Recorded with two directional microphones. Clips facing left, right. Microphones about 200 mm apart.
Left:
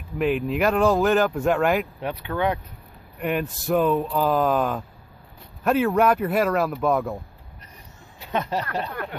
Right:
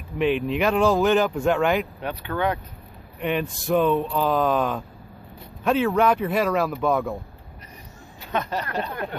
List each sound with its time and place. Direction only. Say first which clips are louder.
0.2 s speech: even; centre (ahead or behind)
8.3 s speech: left 1 dB; 25° left (ahead or behind)